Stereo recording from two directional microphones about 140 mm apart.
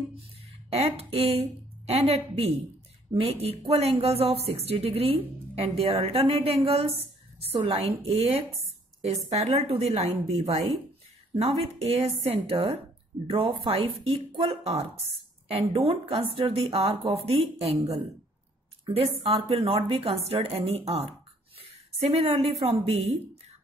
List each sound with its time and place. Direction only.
0.7 s speech: 45° right (ahead or behind)
18.9 s speech: 45° right (ahead or behind)
22.1 s speech: 45° right (ahead or behind)